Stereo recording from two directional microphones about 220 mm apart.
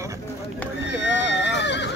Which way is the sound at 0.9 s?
55° left (ahead or behind).